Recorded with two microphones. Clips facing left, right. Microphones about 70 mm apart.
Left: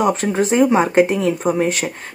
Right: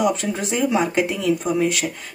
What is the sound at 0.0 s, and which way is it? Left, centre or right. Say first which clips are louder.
Speech: left 4 dB; left.